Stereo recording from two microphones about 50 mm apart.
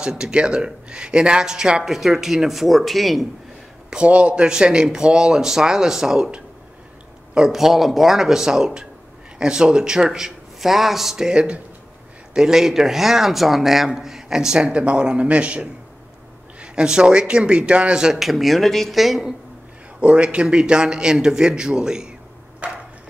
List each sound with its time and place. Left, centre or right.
0.0 s a man's voice: centre
3.9 s a man's voice: right; by 19.2 s centre
20.0 s a man's voice: right
22.6 s a sound: right